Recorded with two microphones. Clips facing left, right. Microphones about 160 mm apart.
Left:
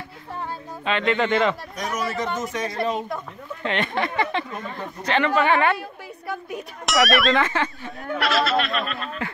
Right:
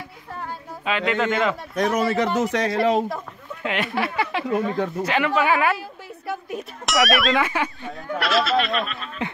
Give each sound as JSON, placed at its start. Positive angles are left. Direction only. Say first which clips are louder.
{"t": 0.8, "sound": "a woman's voice", "louder": "even", "side_deg": -5}
{"t": 1.8, "sound": "speech", "louder": "right 6 dB", "side_deg": -65}
{"t": 3.6, "sound": "speech", "louder": "even", "side_deg": -5}
{"t": 4.5, "sound": "speech", "louder": "right 10 dB", "side_deg": -90}
{"t": 5.0, "sound": "a woman's voice", "louder": "left 2 dB", "side_deg": -10}
{"t": 8.2, "sound": "a woman's voice", "louder": "right 1 dB", "side_deg": 0}